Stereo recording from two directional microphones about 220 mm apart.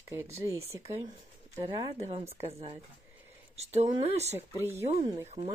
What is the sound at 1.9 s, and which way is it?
A woman's voice, 30° right (ahead or behind).